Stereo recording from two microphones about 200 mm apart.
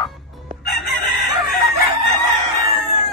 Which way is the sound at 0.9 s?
50° left (ahead or behind).